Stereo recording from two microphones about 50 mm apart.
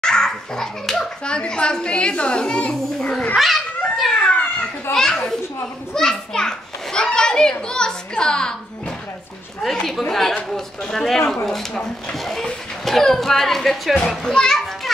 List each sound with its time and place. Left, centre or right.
0.0 s a child's voice: centre
3.3 s cat: centre
4.1 s a sound: centre
4.9 s a child's voice: centre
9.6 s a child's voice: centre